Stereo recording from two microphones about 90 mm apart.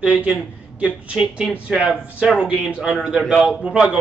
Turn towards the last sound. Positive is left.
turn(degrees=-10)  # may be behind; listen again after turning